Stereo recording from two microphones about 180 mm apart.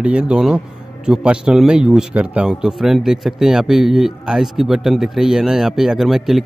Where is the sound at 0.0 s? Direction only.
5° right (ahead or behind).